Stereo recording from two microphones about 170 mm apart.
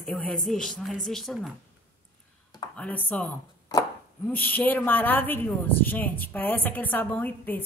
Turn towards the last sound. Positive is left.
turn(degrees=10)  # may be behind; listen again after turning